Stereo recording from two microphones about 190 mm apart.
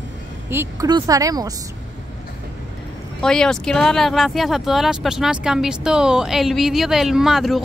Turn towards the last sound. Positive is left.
turn(degrees=0)  # may be behind; listen again after turning